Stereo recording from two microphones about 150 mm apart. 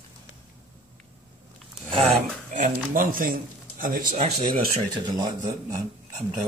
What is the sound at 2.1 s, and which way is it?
Speech, 55° right (ahead or behind).